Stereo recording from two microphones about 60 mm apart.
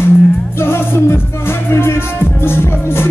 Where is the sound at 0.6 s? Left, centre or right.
Left.